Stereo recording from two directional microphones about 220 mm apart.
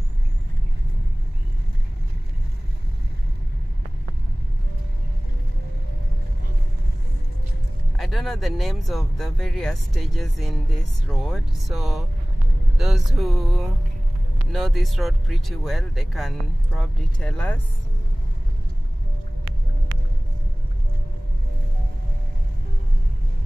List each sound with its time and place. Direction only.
8.0 s speech: centre (ahead or behind)